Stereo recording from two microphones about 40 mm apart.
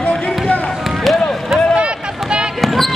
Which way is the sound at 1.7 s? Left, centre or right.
Right.